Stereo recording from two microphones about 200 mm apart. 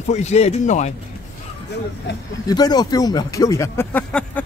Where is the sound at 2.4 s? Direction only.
20° left (ahead or behind).